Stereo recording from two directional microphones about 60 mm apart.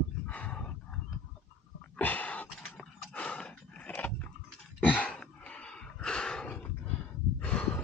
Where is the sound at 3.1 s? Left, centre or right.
Left.